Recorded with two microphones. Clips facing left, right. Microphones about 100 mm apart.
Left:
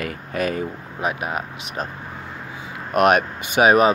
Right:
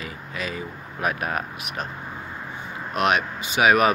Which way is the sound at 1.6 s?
35° left (ahead or behind).